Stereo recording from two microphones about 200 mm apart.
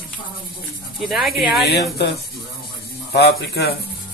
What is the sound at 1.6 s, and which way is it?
Speech, 55° left (ahead or behind).